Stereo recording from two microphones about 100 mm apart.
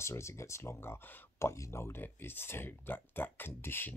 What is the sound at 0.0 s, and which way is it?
Speech, 30° left (ahead or behind).